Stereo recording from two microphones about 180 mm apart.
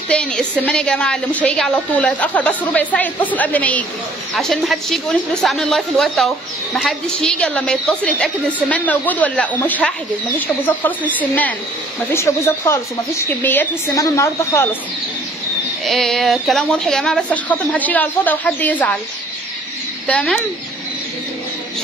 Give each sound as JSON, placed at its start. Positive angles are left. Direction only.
{"t": 0.1, "sound": "a woman's voice", "side_deg": 5}
{"t": 15.8, "sound": "speech", "side_deg": 0}
{"t": 20.1, "sound": "a woman's voice", "side_deg": 5}